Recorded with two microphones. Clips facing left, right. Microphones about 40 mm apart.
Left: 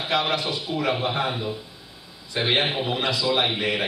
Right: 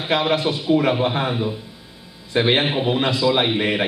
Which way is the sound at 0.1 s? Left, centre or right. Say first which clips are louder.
Right 5 dB; centre.